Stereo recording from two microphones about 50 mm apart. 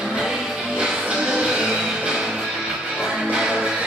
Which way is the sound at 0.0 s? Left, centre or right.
Centre.